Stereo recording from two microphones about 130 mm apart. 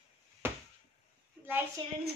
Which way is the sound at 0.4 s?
15° right (ahead or behind).